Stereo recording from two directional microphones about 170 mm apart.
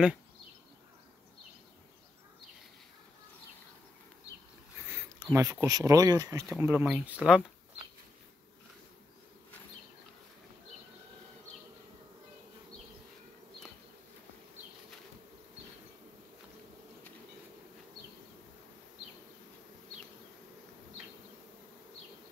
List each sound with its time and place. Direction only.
4.8 s speech: 15° right (ahead or behind)
6.6 s speech: 10° right (ahead or behind)